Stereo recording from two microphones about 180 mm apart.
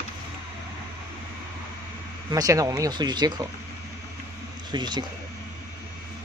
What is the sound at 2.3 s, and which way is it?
Speech, 20° right (ahead or behind).